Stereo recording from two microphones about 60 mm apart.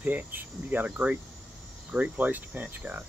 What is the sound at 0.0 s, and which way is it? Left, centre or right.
Speech, right.